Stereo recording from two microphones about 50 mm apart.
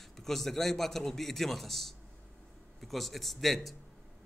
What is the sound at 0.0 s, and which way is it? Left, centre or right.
A man's voice, centre.